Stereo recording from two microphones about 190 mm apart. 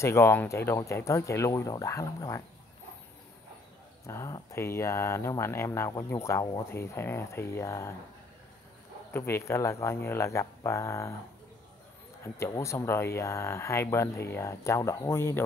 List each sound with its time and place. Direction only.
0.0 s speech: 15° left (ahead or behind)
4.0 s speech: 15° left (ahead or behind)
9.1 s speech: 10° left (ahead or behind)
12.4 s speech: 15° left (ahead or behind)